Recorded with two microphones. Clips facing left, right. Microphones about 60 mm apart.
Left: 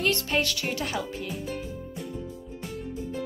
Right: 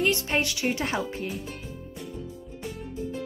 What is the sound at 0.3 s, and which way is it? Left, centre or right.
Speech, centre.